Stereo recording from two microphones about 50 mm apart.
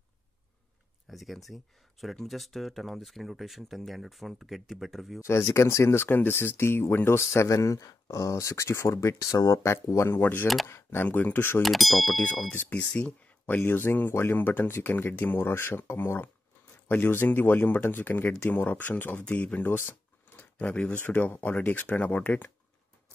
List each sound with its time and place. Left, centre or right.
1.1 s speech: centre
5.2 s speech: left
6.0 s speech: left
10.2 s speech: left
10.7 s speech: left
11.1 s speech: left
11.6 s speech: centre
12.6 s speech: left
13.7 s speech: left
20.3 s a sound: left
21.0 s speech: left